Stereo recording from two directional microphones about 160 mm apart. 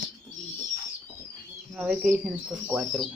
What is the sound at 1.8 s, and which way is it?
Speech, 5° right (ahead or behind).